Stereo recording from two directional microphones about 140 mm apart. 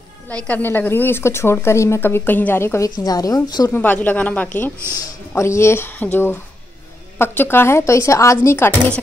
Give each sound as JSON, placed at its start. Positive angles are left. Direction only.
{"t": 0.5, "sound": "speech", "side_deg": 15}
{"t": 3.7, "sound": "speech", "side_deg": 15}
{"t": 7.2, "sound": "a woman's voice", "side_deg": 15}